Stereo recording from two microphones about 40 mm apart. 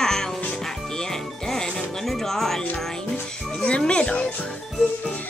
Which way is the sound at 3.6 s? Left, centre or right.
Left.